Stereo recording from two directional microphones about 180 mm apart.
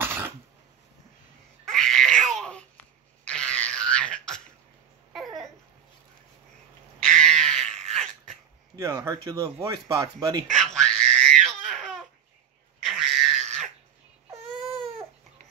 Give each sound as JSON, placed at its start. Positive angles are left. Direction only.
{"t": 0.0, "sound": "cough", "side_deg": -10}
{"t": 1.7, "sound": "a sound", "side_deg": 0}
{"t": 5.1, "sound": "babbling", "side_deg": 0}
{"t": 7.1, "sound": "a sound", "side_deg": 5}
{"t": 7.9, "sound": "dog", "side_deg": 5}
{"t": 8.7, "sound": "speech", "side_deg": -20}
{"t": 10.6, "sound": "crying", "side_deg": 5}
{"t": 13.2, "sound": "a sound", "side_deg": 0}
{"t": 14.6, "sound": "baby cry", "side_deg": 0}